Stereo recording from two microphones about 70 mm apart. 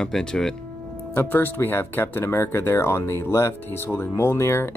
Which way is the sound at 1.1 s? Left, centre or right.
Left.